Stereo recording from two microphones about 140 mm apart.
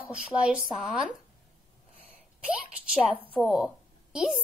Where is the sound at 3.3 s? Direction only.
5° right (ahead or behind).